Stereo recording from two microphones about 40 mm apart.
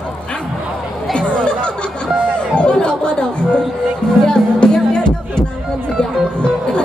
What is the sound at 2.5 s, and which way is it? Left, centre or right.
Speech, left.